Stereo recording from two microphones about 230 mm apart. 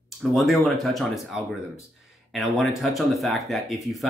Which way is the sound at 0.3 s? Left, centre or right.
Centre.